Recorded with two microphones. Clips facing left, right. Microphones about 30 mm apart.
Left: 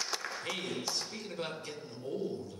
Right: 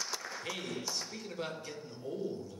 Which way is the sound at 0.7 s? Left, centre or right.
Left.